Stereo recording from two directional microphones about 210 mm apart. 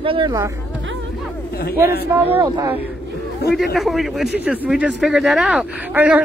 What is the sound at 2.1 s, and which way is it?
Speech, 10° right (ahead or behind).